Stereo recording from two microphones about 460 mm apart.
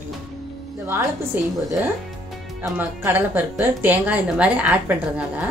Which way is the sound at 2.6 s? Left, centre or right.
Centre.